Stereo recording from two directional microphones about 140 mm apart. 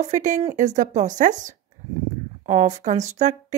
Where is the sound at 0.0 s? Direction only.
60° right (ahead or behind).